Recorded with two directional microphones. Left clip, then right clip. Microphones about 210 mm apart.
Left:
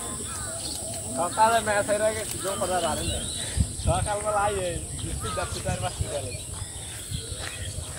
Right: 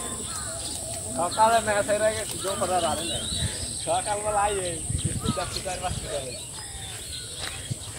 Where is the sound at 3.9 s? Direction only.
15° left (ahead or behind).